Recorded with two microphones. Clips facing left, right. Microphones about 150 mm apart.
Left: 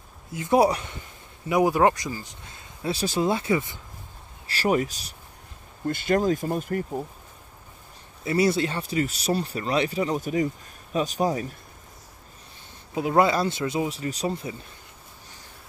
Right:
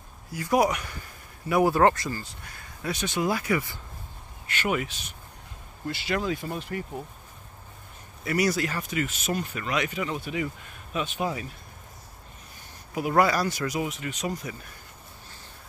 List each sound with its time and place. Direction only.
0.3 s speech: 25° left (ahead or behind)
4.5 s speech: 35° left (ahead or behind)
8.2 s speech: 25° left (ahead or behind)
12.9 s speech: 25° left (ahead or behind)